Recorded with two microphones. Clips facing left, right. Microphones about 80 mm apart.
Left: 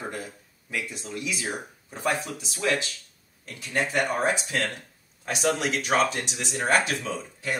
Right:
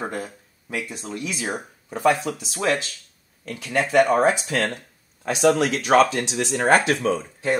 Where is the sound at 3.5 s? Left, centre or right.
Right.